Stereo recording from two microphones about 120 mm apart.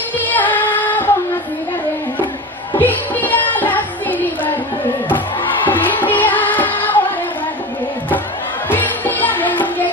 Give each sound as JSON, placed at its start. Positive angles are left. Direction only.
{"t": 0.3, "sound": "female singing", "side_deg": 15}
{"t": 2.8, "sound": "music", "side_deg": 15}
{"t": 5.7, "sound": "music", "side_deg": 15}
{"t": 8.6, "sound": "music", "side_deg": 15}